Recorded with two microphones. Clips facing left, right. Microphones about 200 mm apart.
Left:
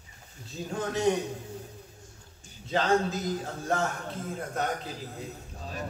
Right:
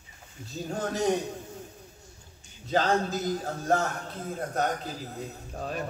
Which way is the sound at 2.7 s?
40° right (ahead or behind).